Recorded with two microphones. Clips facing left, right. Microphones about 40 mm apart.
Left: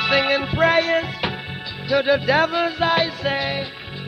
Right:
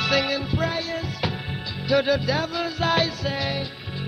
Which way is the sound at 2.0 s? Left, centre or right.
Left.